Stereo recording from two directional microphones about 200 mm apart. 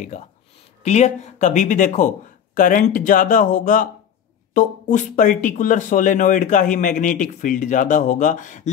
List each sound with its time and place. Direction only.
0.8 s speech: 35° left (ahead or behind)